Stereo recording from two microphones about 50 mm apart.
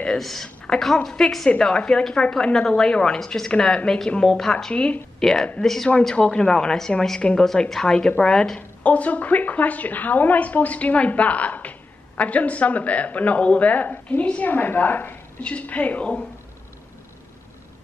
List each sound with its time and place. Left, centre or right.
0.2 s a woman's voice: centre
8.5 s a woman's voice: left
15.4 s a woman's voice: left